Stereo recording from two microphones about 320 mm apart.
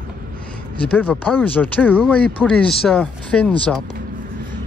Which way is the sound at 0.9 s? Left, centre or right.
Centre.